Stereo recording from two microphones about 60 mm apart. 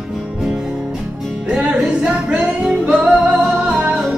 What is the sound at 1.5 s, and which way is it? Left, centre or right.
Music, centre.